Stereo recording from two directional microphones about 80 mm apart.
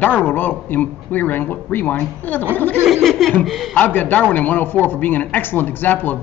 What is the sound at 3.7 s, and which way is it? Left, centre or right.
A man's voice, left.